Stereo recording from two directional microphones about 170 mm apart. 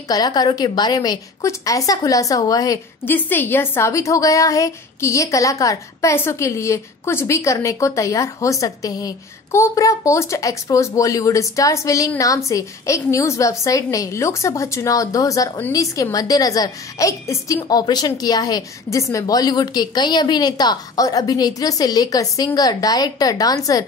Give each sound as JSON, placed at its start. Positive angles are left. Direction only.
{"t": 0.1, "sound": "a woman's voice", "side_deg": 25}